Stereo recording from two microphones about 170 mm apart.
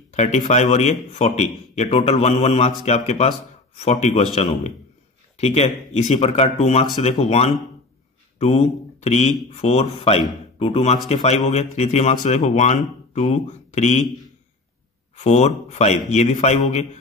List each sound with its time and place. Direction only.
0.1 s a man's voice: 40° left (ahead or behind)
15.1 s a man's voice: 40° left (ahead or behind)